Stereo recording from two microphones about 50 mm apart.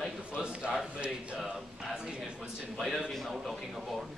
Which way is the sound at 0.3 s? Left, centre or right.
Centre.